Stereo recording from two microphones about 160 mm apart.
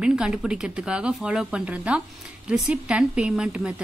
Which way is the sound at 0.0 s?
5° right (ahead or behind).